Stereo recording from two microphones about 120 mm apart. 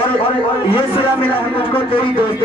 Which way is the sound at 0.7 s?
50° left (ahead or behind).